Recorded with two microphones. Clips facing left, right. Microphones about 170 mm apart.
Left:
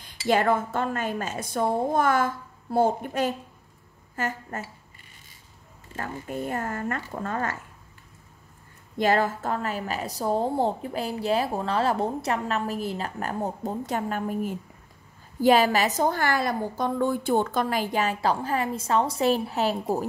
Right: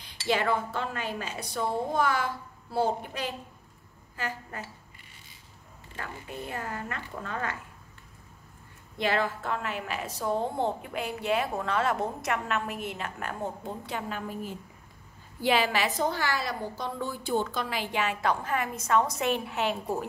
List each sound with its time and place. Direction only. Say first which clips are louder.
0.3 s speech: left 5 dB; 45° left (ahead or behind)
5.9 s speech: left 7 dB; 50° left (ahead or behind)
8.9 s a woman's voice: left 5 dB; 40° left (ahead or behind)